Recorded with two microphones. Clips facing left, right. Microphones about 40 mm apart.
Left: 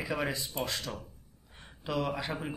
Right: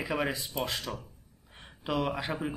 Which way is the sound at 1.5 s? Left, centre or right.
Centre.